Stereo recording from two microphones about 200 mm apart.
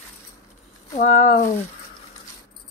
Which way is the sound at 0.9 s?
30° left (ahead or behind).